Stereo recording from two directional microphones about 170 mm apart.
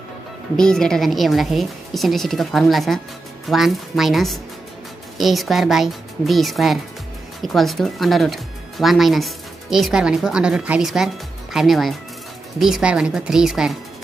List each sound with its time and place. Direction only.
0.6 s speech: 5° left (ahead or behind)